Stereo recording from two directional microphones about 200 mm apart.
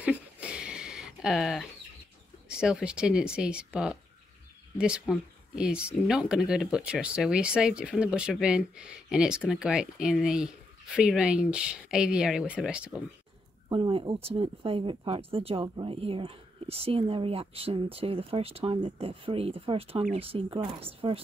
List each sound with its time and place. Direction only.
0.0 s a sound: 5° right (ahead or behind)
2.4 s speech: 5° right (ahead or behind)
13.7 s speech: 25° right (ahead or behind)